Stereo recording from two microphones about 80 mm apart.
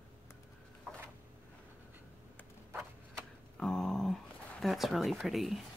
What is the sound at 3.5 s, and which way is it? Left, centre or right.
Speech, centre.